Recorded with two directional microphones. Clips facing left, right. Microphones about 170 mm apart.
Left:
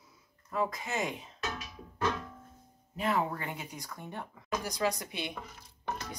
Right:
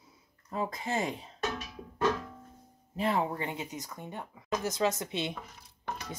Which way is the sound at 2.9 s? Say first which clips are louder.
Right 1 dB; 30° right (ahead or behind).